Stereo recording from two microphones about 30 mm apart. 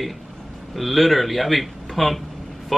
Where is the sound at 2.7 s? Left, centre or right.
Centre.